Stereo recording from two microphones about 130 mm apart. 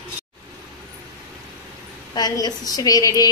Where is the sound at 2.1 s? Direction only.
30° left (ahead or behind).